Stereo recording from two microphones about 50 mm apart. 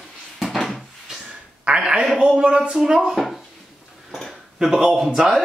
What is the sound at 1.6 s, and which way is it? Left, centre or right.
A woman's voice, centre.